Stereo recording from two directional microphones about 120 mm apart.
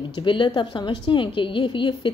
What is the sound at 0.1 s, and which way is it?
A woman's voice, 45° left (ahead or behind).